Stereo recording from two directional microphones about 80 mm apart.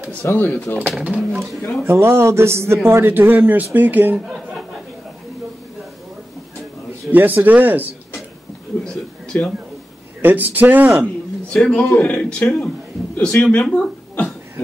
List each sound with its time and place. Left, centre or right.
0.2 s speech: left
0.8 s speech: centre
1.9 s a man's voice: right
7.1 s a man's voice: right
8.8 s speech: centre
10.2 s a man's voice: right
11.4 s speech: centre
13.6 s a sound: centre